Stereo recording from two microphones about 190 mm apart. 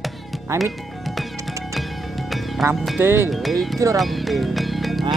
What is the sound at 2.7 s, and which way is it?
Speech, centre (ahead or behind).